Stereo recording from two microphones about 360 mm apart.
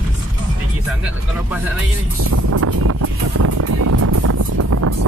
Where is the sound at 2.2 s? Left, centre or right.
Right.